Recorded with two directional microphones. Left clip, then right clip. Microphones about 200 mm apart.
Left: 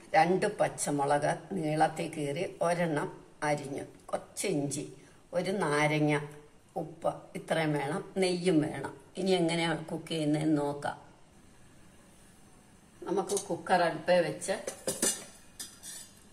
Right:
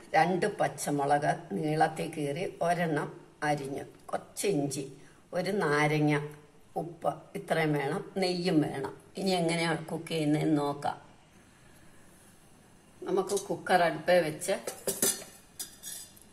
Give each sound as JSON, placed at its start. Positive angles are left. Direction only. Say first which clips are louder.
{"t": 0.1, "sound": "a woman's voice", "louder": "left 1 dB", "side_deg": 0}
{"t": 13.7, "sound": "a woman's voice", "louder": "right 1 dB", "side_deg": -15}